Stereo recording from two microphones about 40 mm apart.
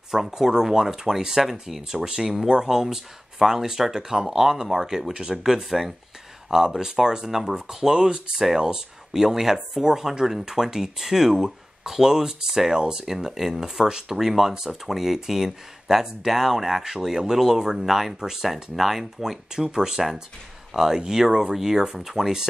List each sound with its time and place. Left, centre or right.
0.1 s speech: centre